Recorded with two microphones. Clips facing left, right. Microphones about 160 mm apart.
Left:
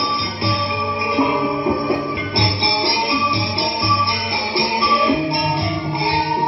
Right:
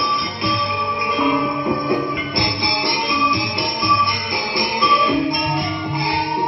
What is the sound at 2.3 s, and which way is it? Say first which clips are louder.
Music: left 3 dB; 30° left (ahead or behind).